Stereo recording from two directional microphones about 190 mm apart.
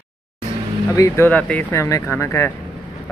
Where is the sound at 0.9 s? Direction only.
15° left (ahead or behind).